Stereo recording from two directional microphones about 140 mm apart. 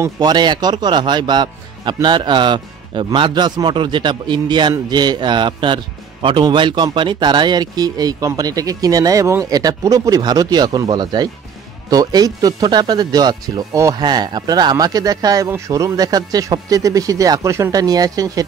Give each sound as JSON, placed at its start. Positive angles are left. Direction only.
{"t": 0.0, "sound": "speech", "side_deg": -30}